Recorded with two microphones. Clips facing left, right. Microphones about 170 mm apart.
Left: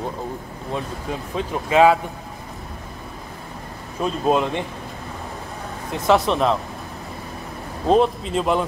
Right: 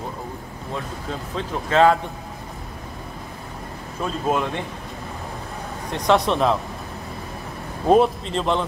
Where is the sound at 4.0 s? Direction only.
20° left (ahead or behind).